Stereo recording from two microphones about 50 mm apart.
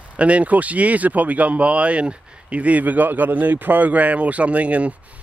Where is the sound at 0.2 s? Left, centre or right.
Right.